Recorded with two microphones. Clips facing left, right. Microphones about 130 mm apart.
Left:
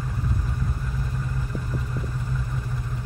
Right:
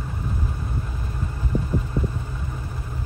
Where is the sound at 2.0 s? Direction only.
25° right (ahead or behind).